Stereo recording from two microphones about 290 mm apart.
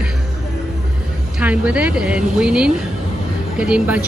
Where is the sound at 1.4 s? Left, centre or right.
Centre.